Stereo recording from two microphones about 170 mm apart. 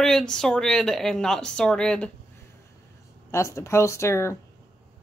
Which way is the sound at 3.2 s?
15° left (ahead or behind).